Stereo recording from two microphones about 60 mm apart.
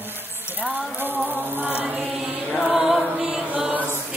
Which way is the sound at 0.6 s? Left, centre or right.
Right.